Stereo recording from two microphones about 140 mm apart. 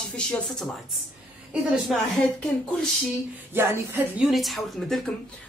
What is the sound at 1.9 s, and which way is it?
Speech, centre (ahead or behind).